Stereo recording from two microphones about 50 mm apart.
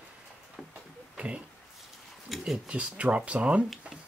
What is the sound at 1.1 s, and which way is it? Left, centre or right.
Speech, right.